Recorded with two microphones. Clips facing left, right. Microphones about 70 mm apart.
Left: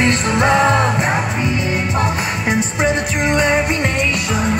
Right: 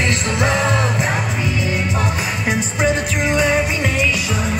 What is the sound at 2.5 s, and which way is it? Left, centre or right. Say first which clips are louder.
Music: left 1 dB; centre.